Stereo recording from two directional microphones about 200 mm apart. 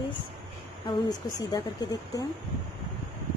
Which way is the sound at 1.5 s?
15° left (ahead or behind).